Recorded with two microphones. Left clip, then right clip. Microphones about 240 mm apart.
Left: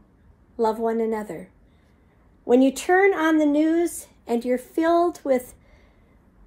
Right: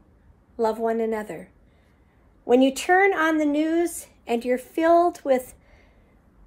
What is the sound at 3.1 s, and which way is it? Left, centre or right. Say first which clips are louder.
Speech: left 2 dB; centre.